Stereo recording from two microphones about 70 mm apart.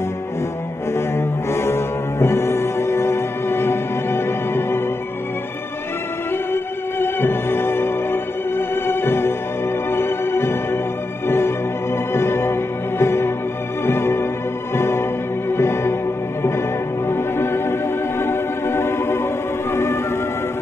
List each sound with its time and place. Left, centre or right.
0.9 s cello: left
6.5 s music: left
17.1 s music: left